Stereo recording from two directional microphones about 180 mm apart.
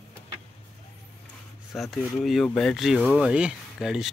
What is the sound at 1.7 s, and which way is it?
Speech, centre (ahead or behind).